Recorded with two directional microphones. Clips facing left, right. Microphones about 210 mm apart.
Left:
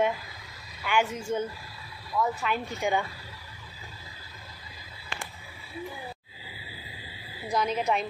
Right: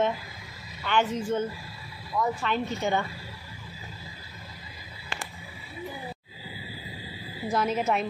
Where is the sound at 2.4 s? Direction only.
10° left (ahead or behind).